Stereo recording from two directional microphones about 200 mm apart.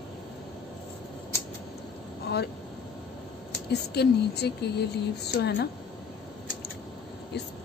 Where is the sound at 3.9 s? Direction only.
55° left (ahead or behind).